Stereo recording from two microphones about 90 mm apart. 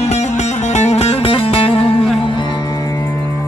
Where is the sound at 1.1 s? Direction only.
90° left.